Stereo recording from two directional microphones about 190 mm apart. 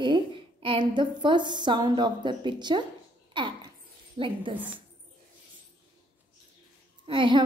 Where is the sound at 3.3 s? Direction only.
25° right (ahead or behind).